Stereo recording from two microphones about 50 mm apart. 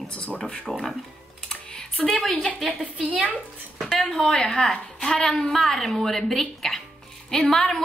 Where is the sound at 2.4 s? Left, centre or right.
Centre.